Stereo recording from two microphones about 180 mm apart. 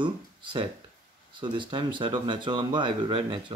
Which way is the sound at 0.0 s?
25° right (ahead or behind).